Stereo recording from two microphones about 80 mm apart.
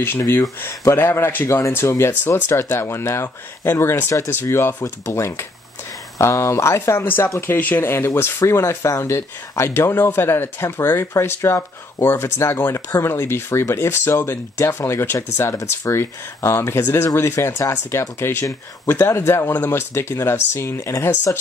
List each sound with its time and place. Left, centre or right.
0.2 s speech: left
0.6 s speech: left